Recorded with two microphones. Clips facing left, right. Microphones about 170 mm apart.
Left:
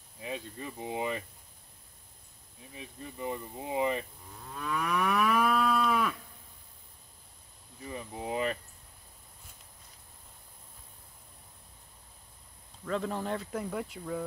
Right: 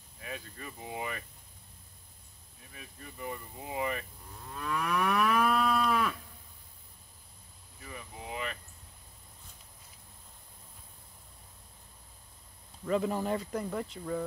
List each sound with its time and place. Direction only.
0.2 s speech: 20° left (ahead or behind)
2.7 s speech: 20° left (ahead or behind)
4.4 s moo: centre (ahead or behind)
7.8 s a sound: 30° left (ahead or behind)
12.8 s speech: 10° right (ahead or behind)